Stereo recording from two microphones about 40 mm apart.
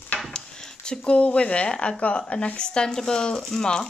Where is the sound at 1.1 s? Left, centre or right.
Left; by 3.6 s centre.